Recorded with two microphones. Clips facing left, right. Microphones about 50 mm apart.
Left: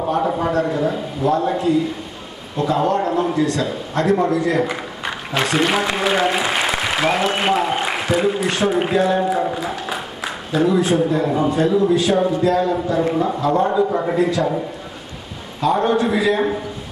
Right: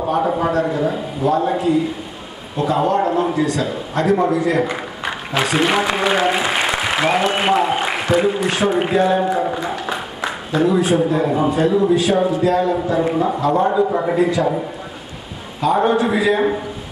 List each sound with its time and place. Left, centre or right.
0.0 s a sound: centre
2.5 s a man's voice: centre
4.6 s a man's voice: centre
12.4 s a man's voice: centre
15.6 s a man's voice: centre